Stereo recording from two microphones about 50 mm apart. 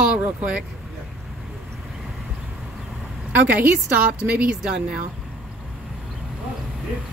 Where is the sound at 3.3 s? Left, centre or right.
Right.